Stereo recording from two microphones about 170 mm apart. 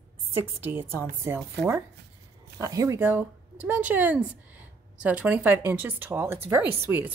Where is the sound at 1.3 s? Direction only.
15° right (ahead or behind).